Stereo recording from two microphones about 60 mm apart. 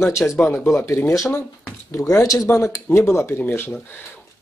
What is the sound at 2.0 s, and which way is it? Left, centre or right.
Speech, left.